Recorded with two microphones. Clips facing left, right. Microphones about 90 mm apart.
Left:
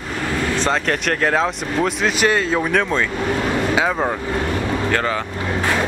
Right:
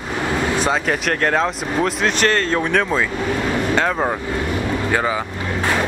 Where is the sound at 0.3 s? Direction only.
20° right (ahead or behind).